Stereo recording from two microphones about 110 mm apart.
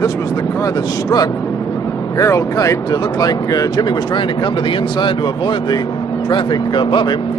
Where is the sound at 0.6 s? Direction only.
30° left (ahead or behind).